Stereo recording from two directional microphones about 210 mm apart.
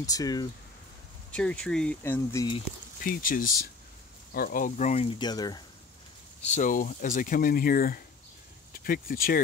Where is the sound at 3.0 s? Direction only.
40° left (ahead or behind); by 5.6 s 20° left (ahead or behind).